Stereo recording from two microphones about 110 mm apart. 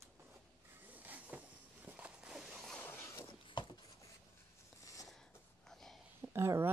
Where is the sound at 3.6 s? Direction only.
45° left (ahead or behind).